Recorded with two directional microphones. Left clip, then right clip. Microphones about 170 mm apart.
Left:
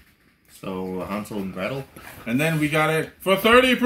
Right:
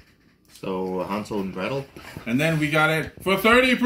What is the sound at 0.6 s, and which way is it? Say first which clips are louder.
Speech: right 3 dB; 25° left (ahead or behind).